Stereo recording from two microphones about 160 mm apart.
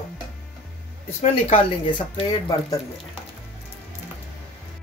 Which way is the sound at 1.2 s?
35° left (ahead or behind).